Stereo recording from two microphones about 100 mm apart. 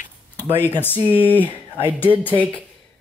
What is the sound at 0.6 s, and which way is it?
Speech, 20° left (ahead or behind).